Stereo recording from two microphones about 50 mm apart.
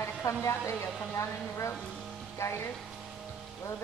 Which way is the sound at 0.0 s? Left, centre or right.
Left.